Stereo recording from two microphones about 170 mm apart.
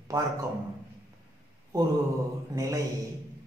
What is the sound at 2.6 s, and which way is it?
Speech, 20° right (ahead or behind).